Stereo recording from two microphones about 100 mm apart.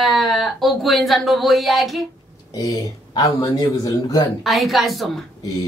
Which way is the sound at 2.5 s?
40° left (ahead or behind).